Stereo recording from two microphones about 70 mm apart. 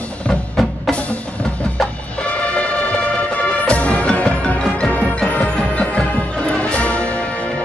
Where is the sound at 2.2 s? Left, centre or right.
Centre.